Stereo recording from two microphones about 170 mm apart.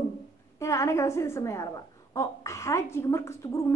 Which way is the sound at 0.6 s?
15° left (ahead or behind).